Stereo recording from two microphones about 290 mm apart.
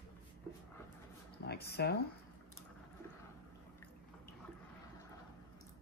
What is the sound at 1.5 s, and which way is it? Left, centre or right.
Speech, left.